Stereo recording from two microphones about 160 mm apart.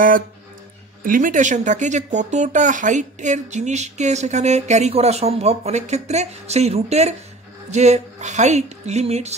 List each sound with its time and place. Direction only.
1.0 s speech: 60° right (ahead or behind); by 9.3 s 40° right (ahead or behind)